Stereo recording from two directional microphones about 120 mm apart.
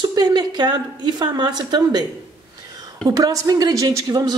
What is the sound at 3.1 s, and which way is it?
A woman's voice, 30° right (ahead or behind).